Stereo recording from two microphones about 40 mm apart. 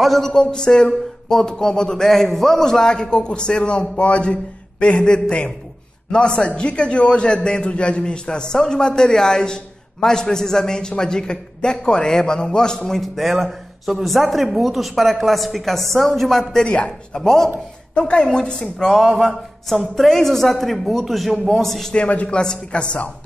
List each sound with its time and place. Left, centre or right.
0.0 s speech: centre
0.3 s a man's voice: centre
16.5 s a man's voice: left
17.1 s a man's voice: centre
17.9 s a man's voice: left
18.9 s a sound: centre
19.7 s a man's voice: centre
21.9 s a man's voice: left